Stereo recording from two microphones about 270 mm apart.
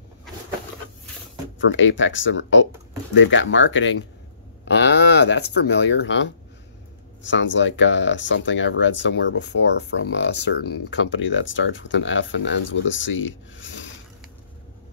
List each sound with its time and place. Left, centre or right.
1.6 s speech: left